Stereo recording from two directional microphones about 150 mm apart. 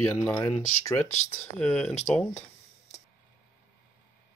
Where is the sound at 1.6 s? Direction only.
5° left (ahead or behind).